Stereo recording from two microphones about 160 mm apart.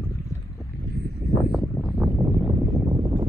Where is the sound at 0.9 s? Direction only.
75° left (ahead or behind).